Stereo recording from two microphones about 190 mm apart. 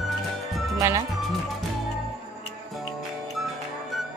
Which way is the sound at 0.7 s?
15° right (ahead or behind).